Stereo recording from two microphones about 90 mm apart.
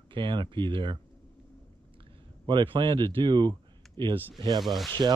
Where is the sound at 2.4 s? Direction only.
60° right (ahead or behind).